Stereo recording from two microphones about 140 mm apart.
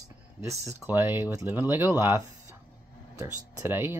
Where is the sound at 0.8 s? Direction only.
15° right (ahead or behind).